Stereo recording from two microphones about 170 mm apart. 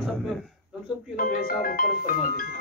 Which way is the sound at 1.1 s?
55° left (ahead or behind).